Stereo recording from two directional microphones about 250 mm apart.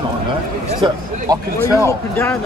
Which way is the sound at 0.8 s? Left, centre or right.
Centre.